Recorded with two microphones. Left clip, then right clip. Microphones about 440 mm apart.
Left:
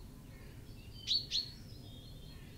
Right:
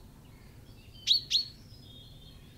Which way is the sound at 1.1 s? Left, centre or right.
Centre.